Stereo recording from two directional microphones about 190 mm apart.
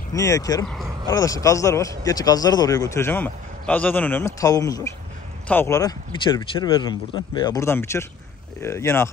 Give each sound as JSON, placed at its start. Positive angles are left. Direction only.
{"t": 0.1, "sound": "speech", "side_deg": 15}